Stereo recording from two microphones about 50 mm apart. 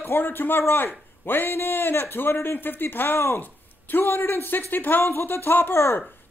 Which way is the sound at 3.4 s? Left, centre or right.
Left.